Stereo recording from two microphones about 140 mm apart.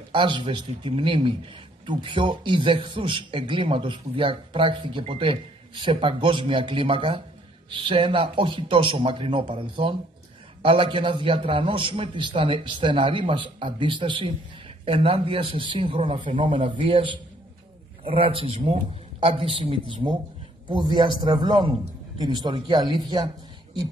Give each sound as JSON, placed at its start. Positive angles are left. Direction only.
{"t": 0.1, "sound": "a man's voice", "side_deg": -35}